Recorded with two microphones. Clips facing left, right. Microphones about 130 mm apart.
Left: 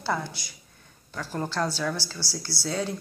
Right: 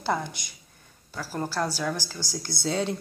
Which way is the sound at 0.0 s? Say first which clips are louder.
Right 1 dB; 20° right (ahead or behind).